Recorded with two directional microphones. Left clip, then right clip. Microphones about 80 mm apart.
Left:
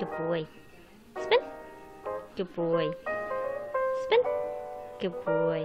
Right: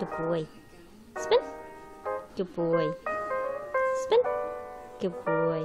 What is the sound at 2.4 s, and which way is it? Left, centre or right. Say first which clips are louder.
Speech: even; right.